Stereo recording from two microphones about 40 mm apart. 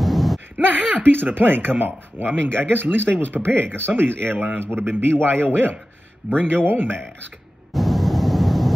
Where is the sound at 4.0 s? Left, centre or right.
Right.